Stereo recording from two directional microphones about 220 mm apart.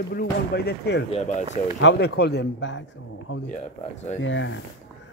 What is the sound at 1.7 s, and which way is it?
A man's voice, 50° left (ahead or behind).